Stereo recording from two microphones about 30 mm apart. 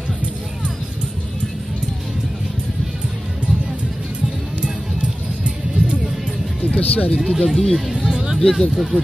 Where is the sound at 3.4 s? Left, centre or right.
Right.